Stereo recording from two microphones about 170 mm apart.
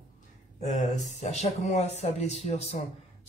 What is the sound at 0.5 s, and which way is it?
Speech, 45° left (ahead or behind).